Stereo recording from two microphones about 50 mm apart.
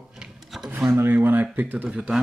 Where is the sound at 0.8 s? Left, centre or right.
Right.